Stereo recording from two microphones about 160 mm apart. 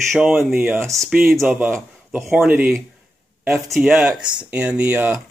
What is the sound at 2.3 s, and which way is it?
Speech, 10° right (ahead or behind).